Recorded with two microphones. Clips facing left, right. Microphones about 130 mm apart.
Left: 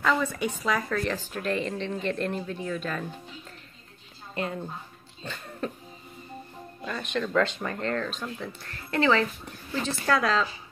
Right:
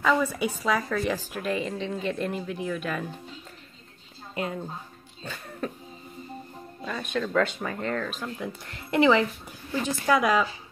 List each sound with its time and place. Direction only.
0.0 s a woman's voice: 5° right (ahead or behind)
5.2 s a woman's voice: 5° right (ahead or behind)
6.8 s a woman's voice: 5° right (ahead or behind)